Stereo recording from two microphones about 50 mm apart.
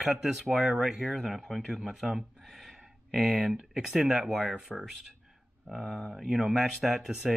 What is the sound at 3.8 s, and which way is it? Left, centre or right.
Speech, centre.